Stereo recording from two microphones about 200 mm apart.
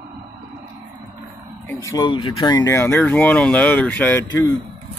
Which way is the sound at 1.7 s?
15° left (ahead or behind).